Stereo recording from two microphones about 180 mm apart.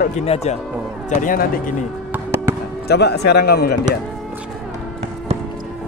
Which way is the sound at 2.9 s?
65° left (ahead or behind).